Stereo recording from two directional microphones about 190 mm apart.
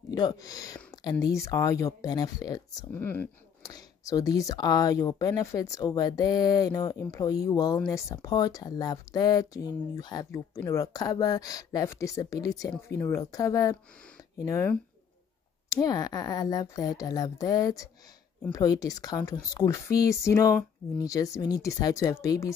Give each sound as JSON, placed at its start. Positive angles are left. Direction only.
{"t": 0.1, "sound": "speech", "side_deg": 20}